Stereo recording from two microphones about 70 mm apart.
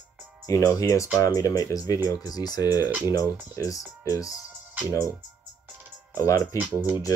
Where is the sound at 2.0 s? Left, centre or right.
Left.